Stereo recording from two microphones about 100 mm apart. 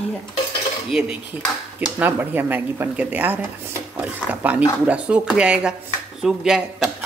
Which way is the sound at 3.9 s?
15° right (ahead or behind).